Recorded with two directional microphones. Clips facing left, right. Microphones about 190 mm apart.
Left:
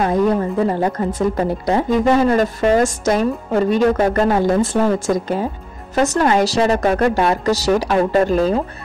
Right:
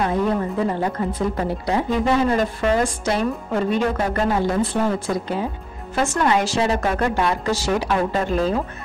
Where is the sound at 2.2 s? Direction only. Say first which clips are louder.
Left 4 dB; 45° left (ahead or behind).